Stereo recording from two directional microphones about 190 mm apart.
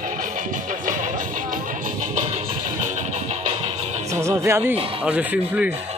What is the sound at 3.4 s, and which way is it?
Music, 30° right (ahead or behind).